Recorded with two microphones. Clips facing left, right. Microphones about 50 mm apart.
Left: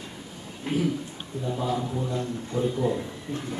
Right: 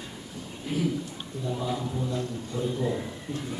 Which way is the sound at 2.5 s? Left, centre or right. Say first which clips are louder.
Left 4 dB; left.